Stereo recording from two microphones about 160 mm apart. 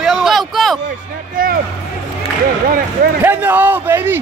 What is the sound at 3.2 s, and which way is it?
Speech, 10° right (ahead or behind).